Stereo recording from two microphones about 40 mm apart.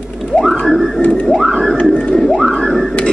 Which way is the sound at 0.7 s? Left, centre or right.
Centre.